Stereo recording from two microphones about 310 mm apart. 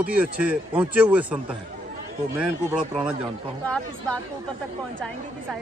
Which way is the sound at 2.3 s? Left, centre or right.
Centre.